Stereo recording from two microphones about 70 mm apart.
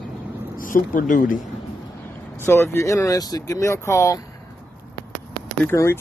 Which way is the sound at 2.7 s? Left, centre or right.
Left.